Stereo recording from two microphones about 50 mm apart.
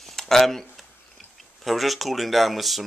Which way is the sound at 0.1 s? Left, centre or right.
Centre.